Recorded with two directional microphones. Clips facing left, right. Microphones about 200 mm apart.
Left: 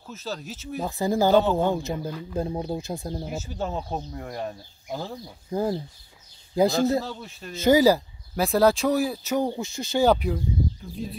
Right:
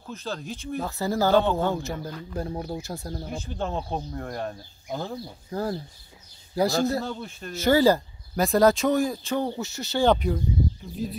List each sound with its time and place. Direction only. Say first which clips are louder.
0.0 s speech: right 1 dB; 5° left (ahead or behind)
0.8 s speech: left 3 dB; 15° left (ahead or behind)
1.6 s speech: left 2 dB; 15° left (ahead or behind)
2.3 s speech: left 3 dB; 20° left (ahead or behind)
3.3 s speech: right 2 dB; 5° left (ahead or behind)
5.5 s speech: left 3 dB; 15° left (ahead or behind)
7.0 s speech: even; centre (ahead or behind)
7.5 s speech: left 2 dB; 15° left (ahead or behind); by 11.1 s 5° right (ahead or behind)